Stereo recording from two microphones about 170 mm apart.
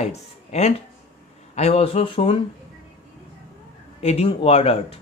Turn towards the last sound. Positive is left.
turn(degrees=35)  # may be behind; listen again after turning